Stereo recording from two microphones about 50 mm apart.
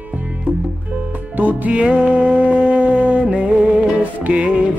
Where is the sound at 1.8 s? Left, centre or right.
Right.